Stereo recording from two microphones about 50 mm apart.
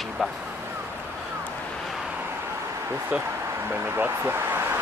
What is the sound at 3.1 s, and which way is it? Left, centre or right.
Speech, right.